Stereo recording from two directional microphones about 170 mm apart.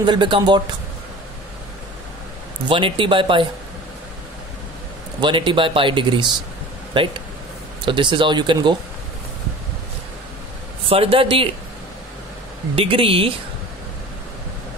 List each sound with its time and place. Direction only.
0.0 s speech: 25° right (ahead or behind)
2.7 s speech: 30° right (ahead or behind)
5.2 s speech: 30° right (ahead or behind)
10.9 s speech: 35° right (ahead or behind)
12.7 s speech: 30° right (ahead or behind)